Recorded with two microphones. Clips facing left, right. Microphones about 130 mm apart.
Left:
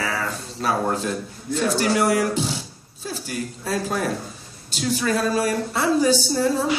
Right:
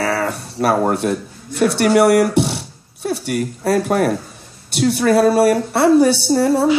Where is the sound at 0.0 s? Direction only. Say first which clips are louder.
Right 7 dB; 70° right (ahead or behind).